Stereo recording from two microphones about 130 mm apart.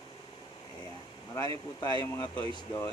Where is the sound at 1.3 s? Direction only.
30° left (ahead or behind).